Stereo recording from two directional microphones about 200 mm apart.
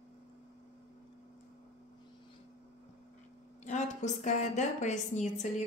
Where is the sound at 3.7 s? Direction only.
35° left (ahead or behind).